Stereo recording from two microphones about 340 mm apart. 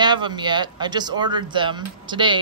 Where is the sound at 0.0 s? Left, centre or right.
Centre.